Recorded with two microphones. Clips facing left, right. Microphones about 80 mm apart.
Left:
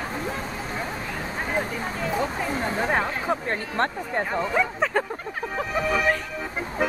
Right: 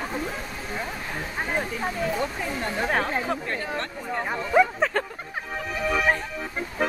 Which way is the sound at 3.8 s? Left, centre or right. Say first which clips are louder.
Left 9 dB; left.